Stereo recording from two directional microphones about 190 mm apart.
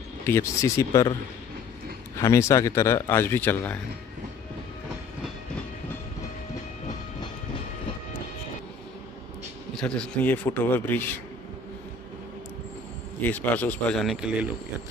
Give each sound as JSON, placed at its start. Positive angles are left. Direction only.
{"t": 0.3, "sound": "a man's voice", "side_deg": 15}
{"t": 2.1, "sound": "a man's voice", "side_deg": 15}
{"t": 9.8, "sound": "a man's voice", "side_deg": 5}
{"t": 13.2, "sound": "a man's voice", "side_deg": 10}